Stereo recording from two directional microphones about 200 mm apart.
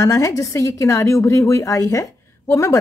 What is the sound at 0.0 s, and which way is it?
A woman's voice, 15° left (ahead or behind).